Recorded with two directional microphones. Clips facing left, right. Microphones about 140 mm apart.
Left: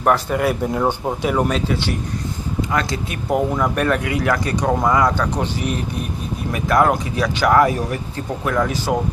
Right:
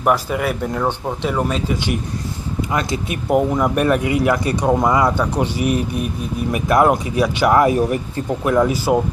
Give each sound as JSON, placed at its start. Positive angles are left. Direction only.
{"t": 0.0, "sound": "speech", "side_deg": -5}
{"t": 2.7, "sound": "speech", "side_deg": -20}
{"t": 4.8, "sound": "speech", "side_deg": -20}
{"t": 5.1, "sound": "speech", "side_deg": -5}
{"t": 6.9, "sound": "speech", "side_deg": -5}
{"t": 7.4, "sound": "speech", "side_deg": -20}